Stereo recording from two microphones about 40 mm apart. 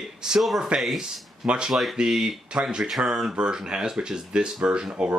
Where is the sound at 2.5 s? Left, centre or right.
Right.